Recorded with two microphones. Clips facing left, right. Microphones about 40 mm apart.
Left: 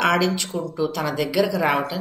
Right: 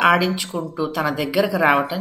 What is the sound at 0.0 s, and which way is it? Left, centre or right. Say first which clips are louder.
A woman's voice: right 3 dB; centre.